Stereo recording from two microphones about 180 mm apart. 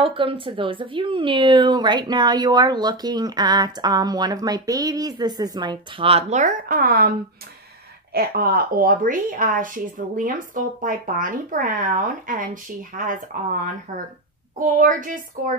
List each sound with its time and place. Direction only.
0.0 s a woman's voice: 30° right (ahead or behind); by 7.1 s 55° right (ahead or behind)
8.1 s speech: 55° right (ahead or behind)